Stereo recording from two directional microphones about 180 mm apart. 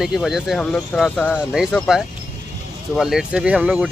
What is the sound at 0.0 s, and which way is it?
Speech, centre (ahead or behind).